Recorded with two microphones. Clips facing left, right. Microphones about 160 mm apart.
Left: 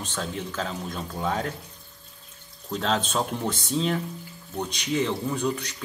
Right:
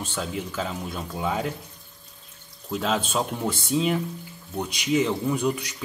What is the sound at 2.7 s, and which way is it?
Speech, 5° right (ahead or behind).